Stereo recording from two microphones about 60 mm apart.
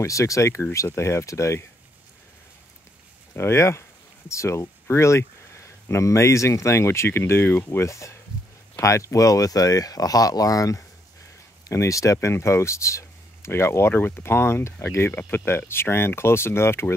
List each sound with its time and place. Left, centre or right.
0.0 s speech: left
3.3 s speech: left
7.7 s speech: left
11.6 s speech: left